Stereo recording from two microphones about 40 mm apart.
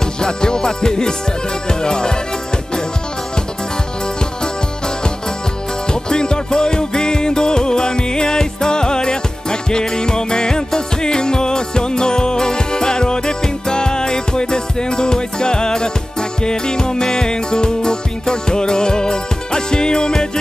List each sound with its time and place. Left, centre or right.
0.0 s music: centre
4.2 s music: centre